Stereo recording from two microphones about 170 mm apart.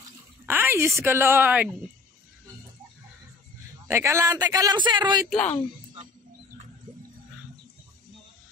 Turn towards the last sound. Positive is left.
turn(degrees=-55)  # may be behind; listen again after turning